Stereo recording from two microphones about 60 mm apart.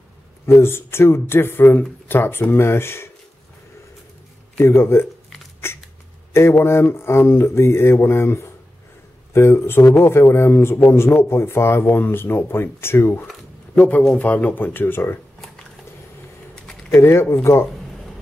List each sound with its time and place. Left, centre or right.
0.5 s speech: left
4.6 s speech: left
5.6 s a sound: left
6.6 s speech: left
13.7 s a man's voice: left
16.9 s speech: left